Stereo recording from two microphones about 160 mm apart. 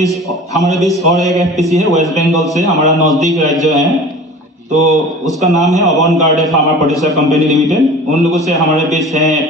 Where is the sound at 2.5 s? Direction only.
20° left (ahead or behind).